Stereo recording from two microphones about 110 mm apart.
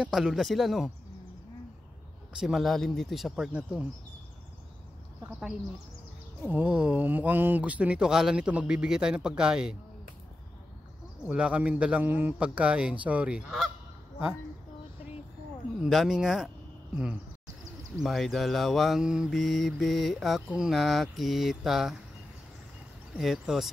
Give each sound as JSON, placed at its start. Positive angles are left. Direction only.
{"t": 0.0, "sound": "mantra", "side_deg": -5}
{"t": 2.3, "sound": "mantra", "side_deg": 0}
{"t": 6.4, "sound": "speech", "side_deg": -15}
{"t": 11.2, "sound": "speech", "side_deg": -10}
{"t": 15.8, "sound": "mantra", "side_deg": 0}
{"t": 16.9, "sound": "speech", "side_deg": -10}
{"t": 18.0, "sound": "mantra", "side_deg": 0}
{"t": 23.1, "sound": "mantra", "side_deg": 0}